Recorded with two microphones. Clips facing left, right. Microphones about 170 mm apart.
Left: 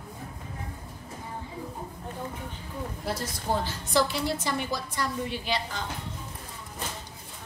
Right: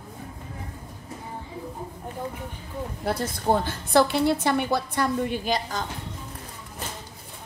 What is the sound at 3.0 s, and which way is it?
A woman's voice, 55° right (ahead or behind).